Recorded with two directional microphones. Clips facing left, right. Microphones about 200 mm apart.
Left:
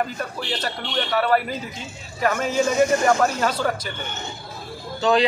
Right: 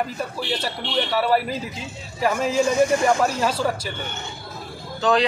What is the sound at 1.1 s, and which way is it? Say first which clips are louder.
Speech: left 1 dB; 5° right (ahead or behind).